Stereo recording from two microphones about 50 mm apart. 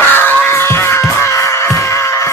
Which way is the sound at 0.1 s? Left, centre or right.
Left.